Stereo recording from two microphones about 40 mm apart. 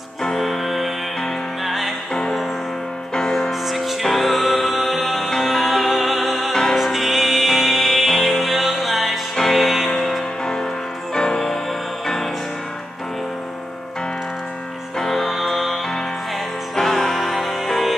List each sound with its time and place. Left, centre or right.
0.2 s music: centre
3.3 s music: centre
5.3 s music: centre
15.0 s music: centre